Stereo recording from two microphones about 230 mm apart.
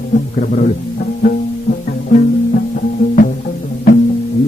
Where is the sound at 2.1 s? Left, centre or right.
Left.